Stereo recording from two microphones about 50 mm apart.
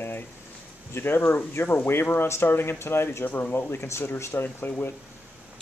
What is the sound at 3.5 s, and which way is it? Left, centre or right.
Speech, left.